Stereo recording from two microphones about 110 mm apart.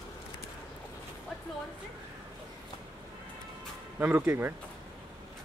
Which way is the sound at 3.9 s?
15° right (ahead or behind).